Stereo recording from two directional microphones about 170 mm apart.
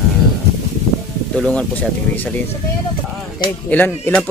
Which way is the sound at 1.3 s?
5° left (ahead or behind).